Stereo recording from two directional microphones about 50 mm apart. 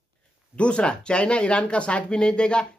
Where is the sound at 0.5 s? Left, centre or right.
Left.